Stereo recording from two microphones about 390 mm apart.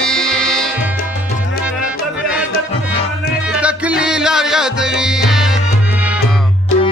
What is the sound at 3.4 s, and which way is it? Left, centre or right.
Music, centre.